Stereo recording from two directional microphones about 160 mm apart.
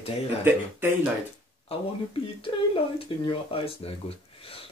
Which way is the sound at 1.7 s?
40° left (ahead or behind).